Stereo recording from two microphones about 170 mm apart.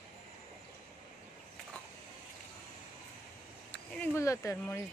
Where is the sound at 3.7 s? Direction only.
5° left (ahead or behind).